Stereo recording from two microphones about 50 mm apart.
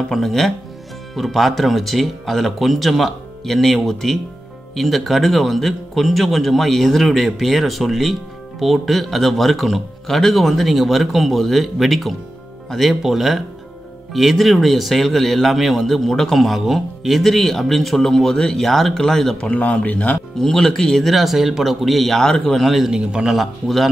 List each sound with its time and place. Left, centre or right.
0.1 s a man's voice: centre
19.3 s speech: left
20.3 s a man's voice: centre
22.8 s speech: centre
23.3 s a man's voice: centre